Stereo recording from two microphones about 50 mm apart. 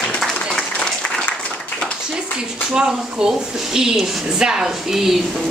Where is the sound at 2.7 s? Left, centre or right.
Centre.